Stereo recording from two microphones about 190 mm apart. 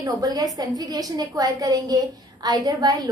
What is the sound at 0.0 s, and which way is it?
A woman's voice, 20° right (ahead or behind).